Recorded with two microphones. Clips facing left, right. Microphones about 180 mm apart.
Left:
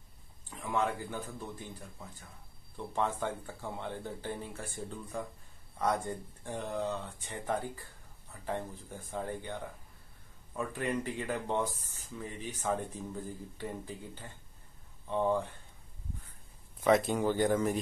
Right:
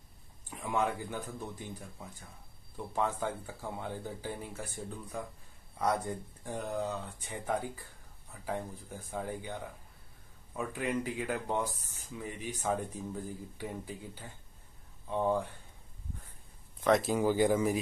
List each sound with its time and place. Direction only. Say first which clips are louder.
0.5 s speech: even; 15° right (ahead or behind)
2.9 s speech: even; 5° right (ahead or behind)
16.8 s speech: even; centre (ahead or behind)